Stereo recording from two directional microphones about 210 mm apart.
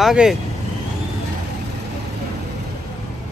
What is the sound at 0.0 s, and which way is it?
Speech, centre (ahead or behind).